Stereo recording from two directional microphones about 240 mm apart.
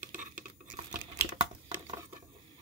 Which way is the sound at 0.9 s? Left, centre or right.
Right.